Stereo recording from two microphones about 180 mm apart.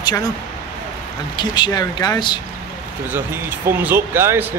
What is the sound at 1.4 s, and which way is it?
Speech, 25° left (ahead or behind).